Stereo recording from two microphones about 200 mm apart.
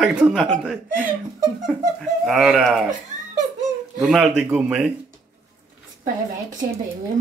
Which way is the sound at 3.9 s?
Centre (ahead or behind).